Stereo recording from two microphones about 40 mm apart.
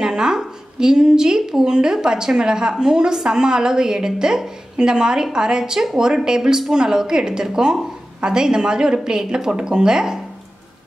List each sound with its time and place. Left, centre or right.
0.0 s a woman's voice: centre